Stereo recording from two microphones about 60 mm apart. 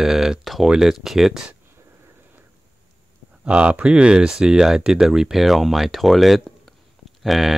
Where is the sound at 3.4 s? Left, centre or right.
Centre.